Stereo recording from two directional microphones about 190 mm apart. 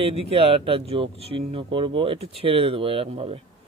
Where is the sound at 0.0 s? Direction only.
30° right (ahead or behind).